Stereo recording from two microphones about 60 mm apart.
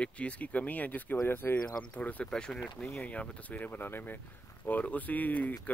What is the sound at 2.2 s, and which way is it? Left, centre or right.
Speech, centre.